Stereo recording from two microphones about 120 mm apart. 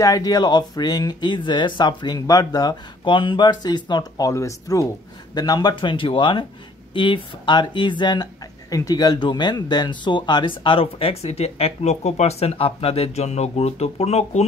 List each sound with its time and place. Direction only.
0.0 s speech: 30° left (ahead or behind)
4.3 s speech: 25° left (ahead or behind); by 14.4 s 60° left (ahead or behind)